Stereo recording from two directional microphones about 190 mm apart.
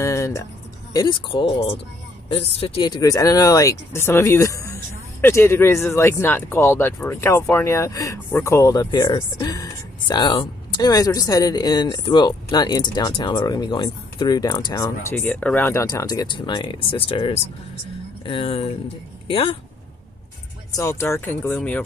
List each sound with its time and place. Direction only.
0.0 s music: 15° left (ahead or behind)
0.9 s speech: 25° left (ahead or behind)
15.1 s speech: 5° left (ahead or behind); by 19.6 s 30° left (ahead or behind)
20.7 s speech: 15° left (ahead or behind)